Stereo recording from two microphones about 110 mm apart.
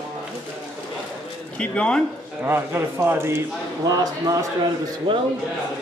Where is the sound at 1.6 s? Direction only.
10° left (ahead or behind).